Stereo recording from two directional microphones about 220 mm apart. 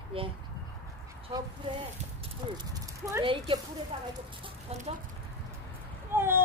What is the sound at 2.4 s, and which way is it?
Horse, 20° right (ahead or behind).